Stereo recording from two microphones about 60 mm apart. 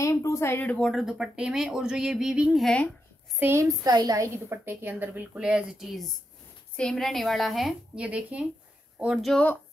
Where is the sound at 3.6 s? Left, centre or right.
Right.